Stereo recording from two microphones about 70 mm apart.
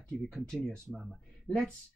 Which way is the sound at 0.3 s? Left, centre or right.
Centre.